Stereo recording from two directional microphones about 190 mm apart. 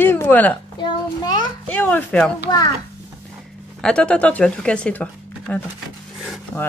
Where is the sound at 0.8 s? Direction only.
20° left (ahead or behind).